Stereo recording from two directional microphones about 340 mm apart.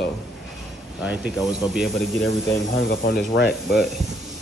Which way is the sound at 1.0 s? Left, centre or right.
Centre.